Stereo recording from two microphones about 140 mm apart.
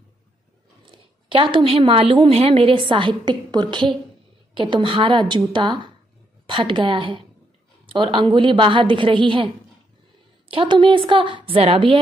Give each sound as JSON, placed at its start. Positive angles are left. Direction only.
{"t": 0.8, "sound": "a woman's voice", "side_deg": -35}
{"t": 10.5, "sound": "a woman's voice", "side_deg": -35}